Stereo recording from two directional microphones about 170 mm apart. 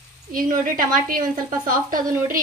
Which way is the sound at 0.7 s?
55° right (ahead or behind).